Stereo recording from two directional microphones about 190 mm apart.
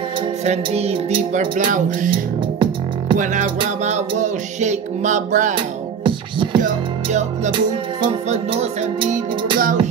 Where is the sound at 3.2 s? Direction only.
45° right (ahead or behind).